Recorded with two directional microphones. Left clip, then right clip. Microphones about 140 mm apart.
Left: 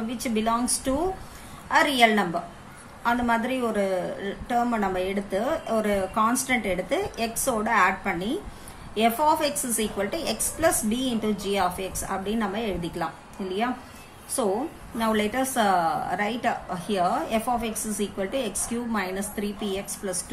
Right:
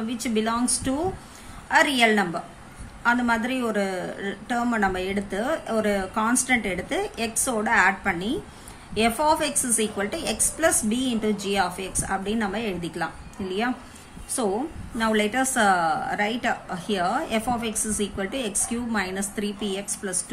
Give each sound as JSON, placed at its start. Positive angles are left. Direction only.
{"t": 0.1, "sound": "a woman's voice", "side_deg": -20}